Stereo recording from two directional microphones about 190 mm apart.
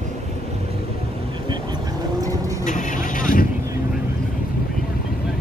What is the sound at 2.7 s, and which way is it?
Vehicle, 45° left (ahead or behind).